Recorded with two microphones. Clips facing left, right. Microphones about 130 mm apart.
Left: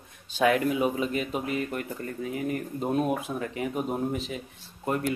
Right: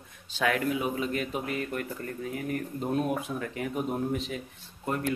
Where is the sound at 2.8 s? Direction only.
15° left (ahead or behind).